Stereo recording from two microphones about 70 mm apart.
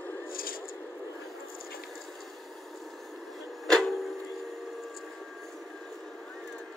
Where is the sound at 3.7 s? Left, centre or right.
Centre.